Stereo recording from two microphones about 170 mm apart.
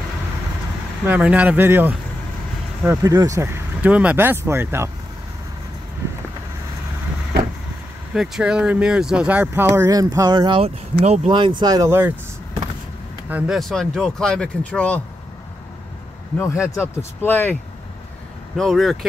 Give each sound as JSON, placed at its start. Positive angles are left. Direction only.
{"t": 1.0, "sound": "speech", "side_deg": -10}
{"t": 8.1, "sound": "speech", "side_deg": -5}
{"t": 13.3, "sound": "speech", "side_deg": 0}
{"t": 16.3, "sound": "speech", "side_deg": 15}
{"t": 18.6, "sound": "speech", "side_deg": 0}